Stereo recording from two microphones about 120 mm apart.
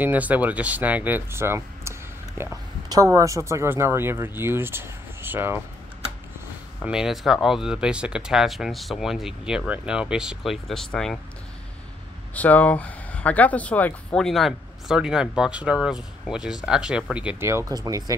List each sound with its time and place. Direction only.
0.0 s speech: 15° right (ahead or behind)
6.8 s speech: 5° right (ahead or behind)
12.4 s speech: 10° left (ahead or behind); by 17.4 s 10° right (ahead or behind)
17.4 s speech: 25° right (ahead or behind)